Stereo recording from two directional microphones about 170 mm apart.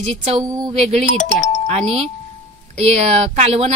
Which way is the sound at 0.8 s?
40° right (ahead or behind).